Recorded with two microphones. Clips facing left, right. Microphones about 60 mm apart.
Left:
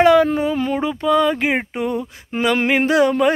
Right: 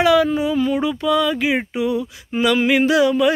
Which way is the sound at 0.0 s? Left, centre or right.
Left.